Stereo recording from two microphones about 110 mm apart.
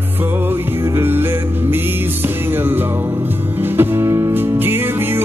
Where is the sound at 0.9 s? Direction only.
20° right (ahead or behind).